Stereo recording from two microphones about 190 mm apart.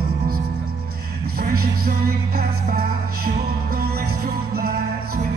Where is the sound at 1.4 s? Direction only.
50° right (ahead or behind).